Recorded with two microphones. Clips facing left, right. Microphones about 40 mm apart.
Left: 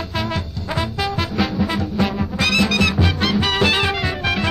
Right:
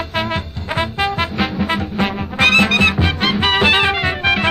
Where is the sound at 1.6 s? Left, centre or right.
Right.